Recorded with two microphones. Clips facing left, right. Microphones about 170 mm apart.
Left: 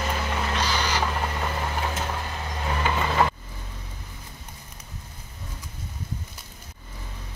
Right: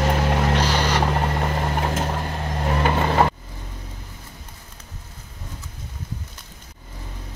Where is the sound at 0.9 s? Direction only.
55° right (ahead or behind).